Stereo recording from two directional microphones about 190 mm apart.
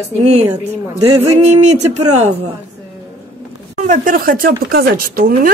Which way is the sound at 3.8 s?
45° right (ahead or behind).